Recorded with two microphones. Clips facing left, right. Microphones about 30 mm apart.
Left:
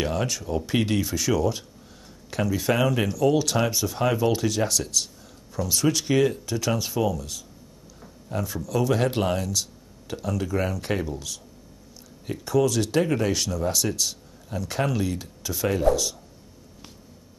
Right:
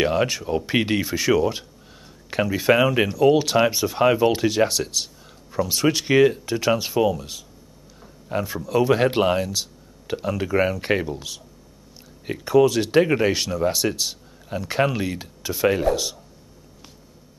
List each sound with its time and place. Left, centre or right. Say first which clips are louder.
0.0 s speech: right 6 dB; right